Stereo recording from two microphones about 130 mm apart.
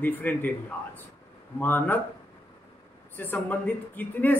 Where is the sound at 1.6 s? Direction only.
15° left (ahead or behind).